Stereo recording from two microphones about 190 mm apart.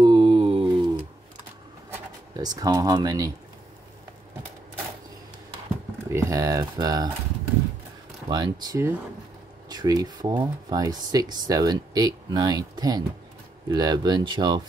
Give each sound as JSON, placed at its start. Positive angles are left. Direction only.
{"t": 0.0, "sound": "a sound", "side_deg": -25}
{"t": 2.3, "sound": "speech", "side_deg": -20}
{"t": 6.0, "sound": "speech", "side_deg": -15}
{"t": 8.3, "sound": "speech", "side_deg": -20}